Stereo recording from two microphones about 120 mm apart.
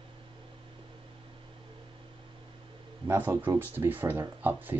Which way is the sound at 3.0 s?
20° right (ahead or behind).